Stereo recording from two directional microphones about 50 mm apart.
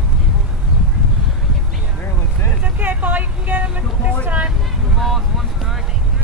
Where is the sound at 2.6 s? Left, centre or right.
Right.